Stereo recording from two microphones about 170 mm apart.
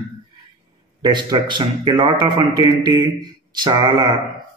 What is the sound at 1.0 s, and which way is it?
Speech, 25° right (ahead or behind).